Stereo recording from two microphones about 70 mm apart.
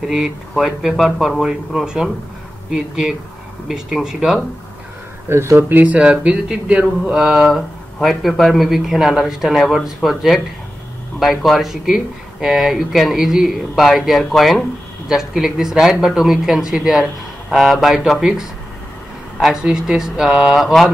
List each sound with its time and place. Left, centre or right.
0.0 s speech: centre
5.3 s speech: right; by 20.9 s centre